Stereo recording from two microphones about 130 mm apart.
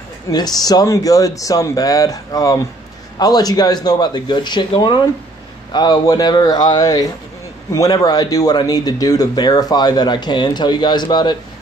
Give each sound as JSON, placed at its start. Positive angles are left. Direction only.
{"t": 0.3, "sound": "speech", "side_deg": 30}